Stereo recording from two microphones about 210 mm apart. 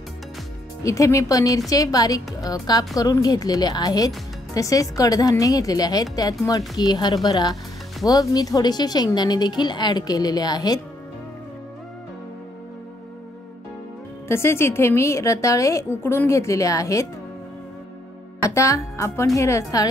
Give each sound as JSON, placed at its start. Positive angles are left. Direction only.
{"t": 0.8, "sound": "a woman's voice", "side_deg": 15}
{"t": 14.2, "sound": "a woman's voice", "side_deg": 10}
{"t": 18.5, "sound": "a woman's voice", "side_deg": 15}